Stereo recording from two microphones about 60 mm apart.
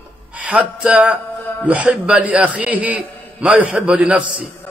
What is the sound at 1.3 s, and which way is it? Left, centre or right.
Music, left.